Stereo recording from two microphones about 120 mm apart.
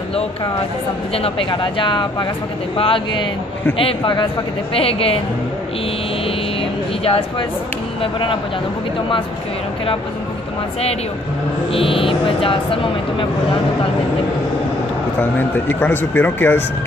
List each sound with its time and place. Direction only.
1.1 s speech: 55° left (ahead or behind)
1.5 s speech: 40° left (ahead or behind)
7.1 s speech: 50° left (ahead or behind)
11.7 s speech: 50° left (ahead or behind)
15.1 s speech: 15° left (ahead or behind)